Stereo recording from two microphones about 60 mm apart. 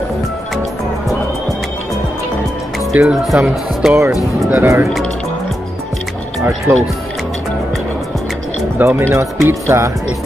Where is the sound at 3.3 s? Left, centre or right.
Right.